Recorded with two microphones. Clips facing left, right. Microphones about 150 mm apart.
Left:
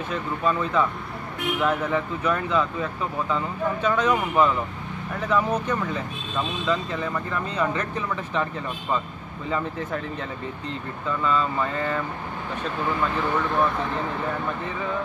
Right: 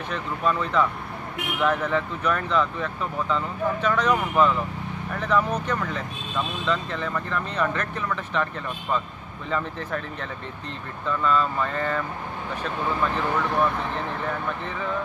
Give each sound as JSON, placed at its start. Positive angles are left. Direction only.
{"t": 0.1, "sound": "speech", "side_deg": 5}
{"t": 9.5, "sound": "speech", "side_deg": 10}
{"t": 11.1, "sound": "speech", "side_deg": 5}